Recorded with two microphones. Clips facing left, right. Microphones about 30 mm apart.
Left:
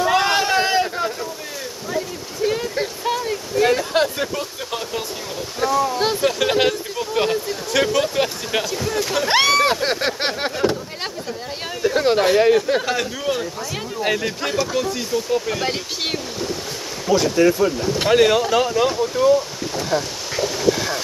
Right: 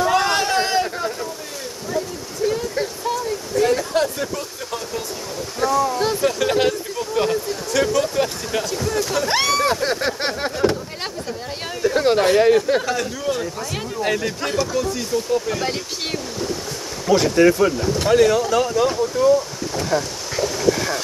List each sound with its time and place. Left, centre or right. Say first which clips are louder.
0.0 s a sound: left 1 dB; centre
3.0 s a sound: left 1 dB; left
5.6 s a sound: even; centre
5.9 s speech: even; left
8.6 s speech: even; centre
11.8 s speech: even; centre
12.8 s speech: left 1 dB; left
14.7 s speech: even; left
17.1 s speech: right 1 dB; centre
17.9 s speech: left 1 dB; left
18.9 s wind: even; left